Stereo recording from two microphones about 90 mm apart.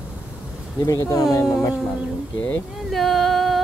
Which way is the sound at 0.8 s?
40° left (ahead or behind).